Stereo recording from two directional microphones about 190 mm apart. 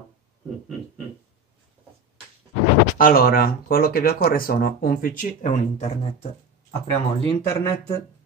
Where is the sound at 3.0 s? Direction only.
50° left (ahead or behind).